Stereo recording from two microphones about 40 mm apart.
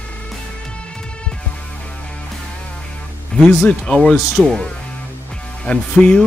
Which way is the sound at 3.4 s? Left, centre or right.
Left.